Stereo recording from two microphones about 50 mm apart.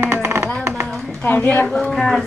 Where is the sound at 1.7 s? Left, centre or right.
Centre.